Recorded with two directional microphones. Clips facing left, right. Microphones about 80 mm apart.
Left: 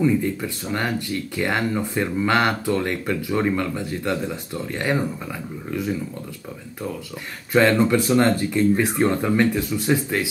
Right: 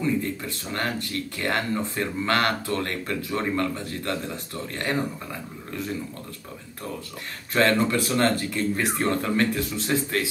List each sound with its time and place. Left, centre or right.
0.0 s speech: centre
7.5 s speech: centre